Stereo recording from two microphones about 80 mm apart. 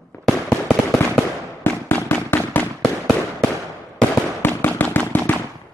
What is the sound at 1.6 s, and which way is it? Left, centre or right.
Fireworks, left.